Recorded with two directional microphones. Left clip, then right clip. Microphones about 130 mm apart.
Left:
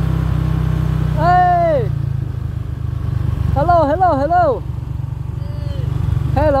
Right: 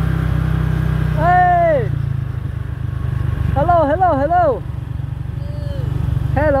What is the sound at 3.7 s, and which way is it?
Speech, 15° left (ahead or behind).